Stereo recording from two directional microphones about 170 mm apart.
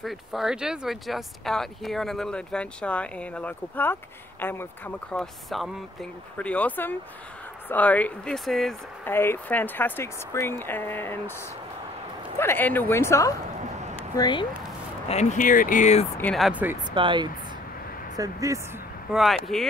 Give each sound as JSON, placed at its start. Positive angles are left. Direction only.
{"t": 0.0, "sound": "speech", "side_deg": 0}
{"t": 9.0, "sound": "speech", "side_deg": 15}
{"t": 12.4, "sound": "speech", "side_deg": 10}
{"t": 13.9, "sound": "a sound", "side_deg": 25}
{"t": 15.0, "sound": "speech", "side_deg": 45}
{"t": 16.2, "sound": "speech", "side_deg": 5}
{"t": 16.9, "sound": "speech", "side_deg": -30}
{"t": 19.1, "sound": "speech", "side_deg": 0}